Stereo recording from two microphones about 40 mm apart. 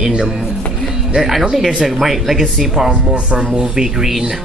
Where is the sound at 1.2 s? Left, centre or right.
Centre.